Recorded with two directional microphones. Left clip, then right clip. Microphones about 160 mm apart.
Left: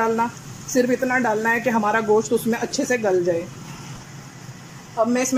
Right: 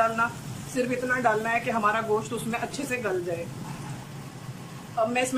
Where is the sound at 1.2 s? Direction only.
45° left (ahead or behind).